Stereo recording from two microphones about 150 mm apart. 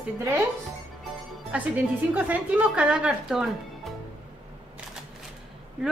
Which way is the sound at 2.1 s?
10° right (ahead or behind).